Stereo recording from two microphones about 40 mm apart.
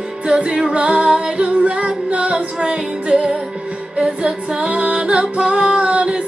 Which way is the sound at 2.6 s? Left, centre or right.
Centre.